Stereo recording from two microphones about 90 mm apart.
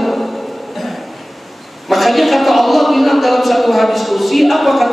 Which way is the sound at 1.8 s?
Centre (ahead or behind).